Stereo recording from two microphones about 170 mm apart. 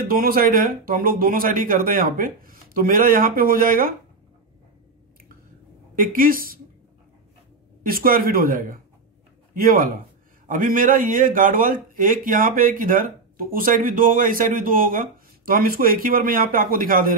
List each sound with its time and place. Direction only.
0.1 s a man's voice: 60° right (ahead or behind)
5.9 s a man's voice: 55° right (ahead or behind)
7.8 s a man's voice: 55° right (ahead or behind)